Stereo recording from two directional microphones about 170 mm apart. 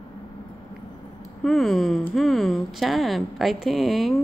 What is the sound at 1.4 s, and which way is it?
A woman's voice, centre (ahead or behind).